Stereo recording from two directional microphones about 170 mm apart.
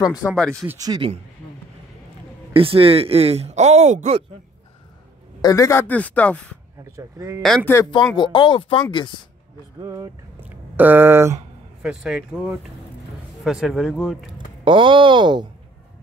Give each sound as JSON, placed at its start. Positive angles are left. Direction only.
{"t": 0.1, "sound": "speech", "side_deg": -5}
{"t": 0.7, "sound": "speech", "side_deg": -20}
{"t": 2.5, "sound": "speech", "side_deg": -35}
{"t": 5.4, "sound": "speech", "side_deg": 20}
{"t": 6.8, "sound": "speech", "side_deg": -20}
{"t": 7.4, "sound": "speech", "side_deg": 5}
{"t": 7.7, "sound": "speech", "side_deg": 20}
{"t": 9.8, "sound": "speech", "side_deg": -15}
{"t": 11.8, "sound": "speech", "side_deg": -5}
{"t": 14.6, "sound": "speech", "side_deg": -30}